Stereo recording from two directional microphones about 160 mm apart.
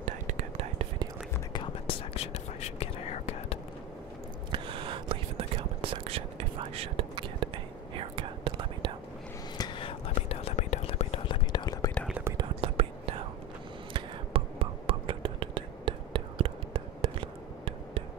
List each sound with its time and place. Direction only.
0.0 s whispering: 50° right (ahead or behind)
1.5 s whispering: 35° left (ahead or behind)
4.5 s whispering: 35° right (ahead or behind)
9.6 s whispering: 35° left (ahead or behind)
12.5 s whispering: 35° right (ahead or behind)